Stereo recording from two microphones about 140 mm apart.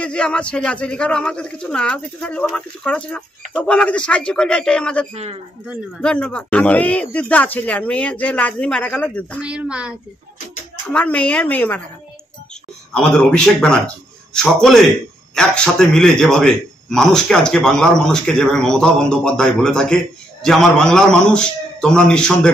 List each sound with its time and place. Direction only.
0.0 s speech: 5° left (ahead or behind)
5.1 s a man's voice: 50° right (ahead or behind)
5.9 s speech: 10° left (ahead or behind)
9.4 s a woman's voice: 10° right (ahead or behind)
10.9 s speech: 10° left (ahead or behind)
12.9 s a man's voice: 5° left (ahead or behind)